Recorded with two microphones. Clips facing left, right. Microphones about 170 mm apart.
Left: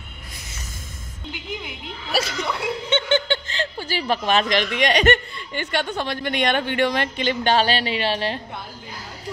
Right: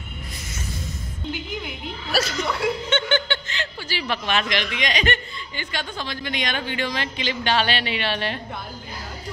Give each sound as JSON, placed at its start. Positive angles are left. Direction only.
{"t": 2.1, "sound": "speech", "side_deg": 25}
{"t": 5.5, "sound": "a woman's voice", "side_deg": 65}